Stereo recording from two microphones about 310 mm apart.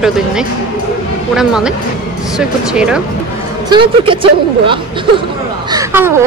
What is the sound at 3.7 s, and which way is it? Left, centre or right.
Speech, centre.